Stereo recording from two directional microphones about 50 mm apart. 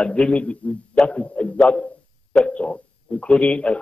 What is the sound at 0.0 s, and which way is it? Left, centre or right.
A man's voice, left.